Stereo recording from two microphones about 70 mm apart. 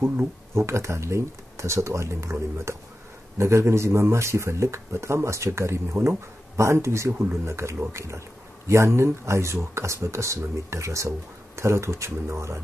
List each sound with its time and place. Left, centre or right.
0.6 s speech: right